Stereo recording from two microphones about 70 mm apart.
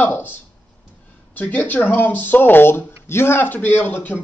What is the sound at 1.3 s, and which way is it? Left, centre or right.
Speech, left.